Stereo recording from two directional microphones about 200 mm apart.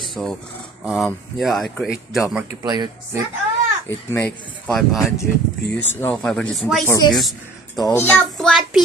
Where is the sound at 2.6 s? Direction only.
20° right (ahead or behind).